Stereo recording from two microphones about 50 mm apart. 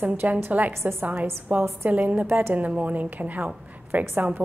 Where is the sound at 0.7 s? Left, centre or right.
Right.